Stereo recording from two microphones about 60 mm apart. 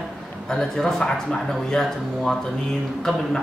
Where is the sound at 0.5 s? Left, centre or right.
Centre.